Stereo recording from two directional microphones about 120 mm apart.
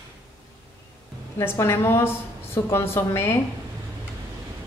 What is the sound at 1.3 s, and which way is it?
Speech, 20° left (ahead or behind).